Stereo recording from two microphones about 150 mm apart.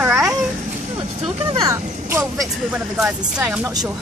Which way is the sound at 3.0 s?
10° right (ahead or behind).